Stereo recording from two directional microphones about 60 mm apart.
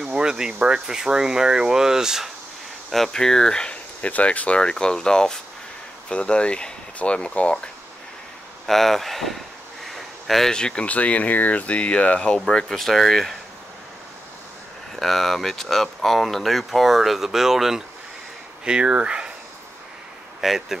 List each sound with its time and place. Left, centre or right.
0.0 s speech: centre
2.9 s speech: centre
8.6 s speech: centre
9.9 s a sound: centre
10.5 s speech: centre
15.0 s speech: centre
20.3 s speech: centre